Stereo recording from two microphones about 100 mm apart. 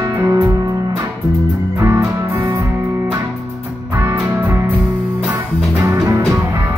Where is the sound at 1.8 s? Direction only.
30° right (ahead or behind).